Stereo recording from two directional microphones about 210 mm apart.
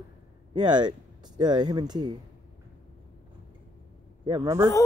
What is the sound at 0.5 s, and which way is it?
Speech, 20° right (ahead or behind).